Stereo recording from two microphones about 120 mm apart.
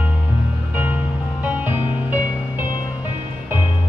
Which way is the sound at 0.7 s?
15° right (ahead or behind).